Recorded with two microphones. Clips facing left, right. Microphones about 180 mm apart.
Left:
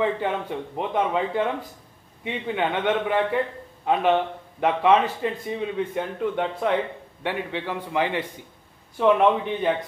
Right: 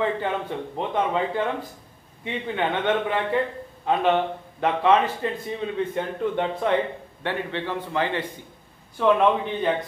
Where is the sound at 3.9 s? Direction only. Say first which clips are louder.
Even; 15° left (ahead or behind).